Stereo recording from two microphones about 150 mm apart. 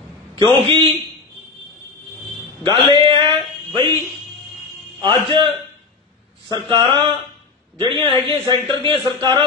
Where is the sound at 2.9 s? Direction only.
30° right (ahead or behind).